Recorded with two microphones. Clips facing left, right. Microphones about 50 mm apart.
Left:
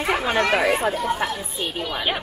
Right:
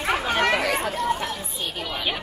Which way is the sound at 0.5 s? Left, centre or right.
Left.